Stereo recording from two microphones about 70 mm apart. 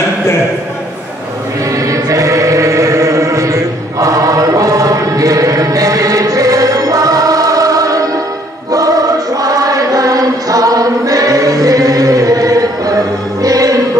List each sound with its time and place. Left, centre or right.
1.8 s chant: right
13.4 s music: right